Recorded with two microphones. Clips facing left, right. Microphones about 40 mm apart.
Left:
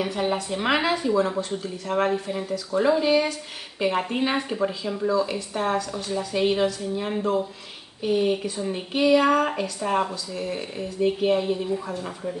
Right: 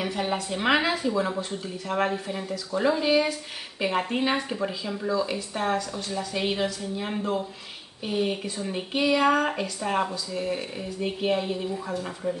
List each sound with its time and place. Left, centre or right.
0.0 s speech: centre